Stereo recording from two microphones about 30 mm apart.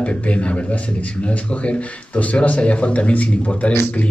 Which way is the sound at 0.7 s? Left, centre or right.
Left.